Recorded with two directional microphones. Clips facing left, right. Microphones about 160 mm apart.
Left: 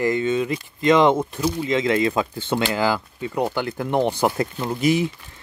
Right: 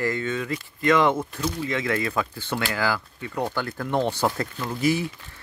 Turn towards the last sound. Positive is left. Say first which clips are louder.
# left 4 dB
turn(degrees=20)  # may be behind; listen again after turning